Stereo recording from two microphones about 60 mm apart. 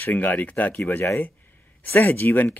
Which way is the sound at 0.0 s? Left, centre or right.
Left.